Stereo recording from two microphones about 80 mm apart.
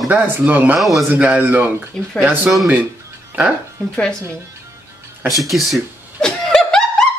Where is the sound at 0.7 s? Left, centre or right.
Centre.